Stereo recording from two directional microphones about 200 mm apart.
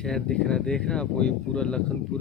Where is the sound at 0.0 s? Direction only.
5° left (ahead or behind).